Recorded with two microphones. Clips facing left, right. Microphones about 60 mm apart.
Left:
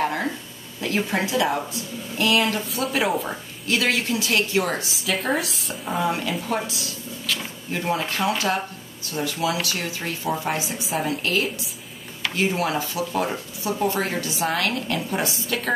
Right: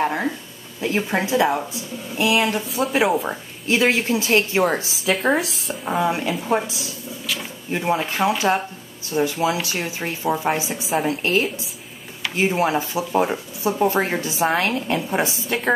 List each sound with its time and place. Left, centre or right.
0.0 s a sound: centre
0.7 s speech: right
2.1 s speech: centre
3.6 s speech: right
5.0 s speech: centre
5.9 s speech: centre
10.8 s speech: centre
12.4 s speech: right